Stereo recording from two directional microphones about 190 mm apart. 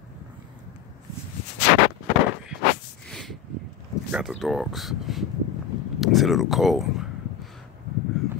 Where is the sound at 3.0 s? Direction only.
5° left (ahead or behind).